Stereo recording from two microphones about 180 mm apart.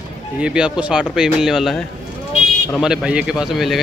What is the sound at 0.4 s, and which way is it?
Speech, 5° right (ahead or behind).